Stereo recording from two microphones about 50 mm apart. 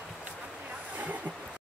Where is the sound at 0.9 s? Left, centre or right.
Right.